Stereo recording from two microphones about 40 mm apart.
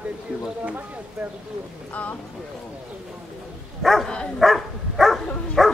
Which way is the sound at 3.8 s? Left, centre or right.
Centre.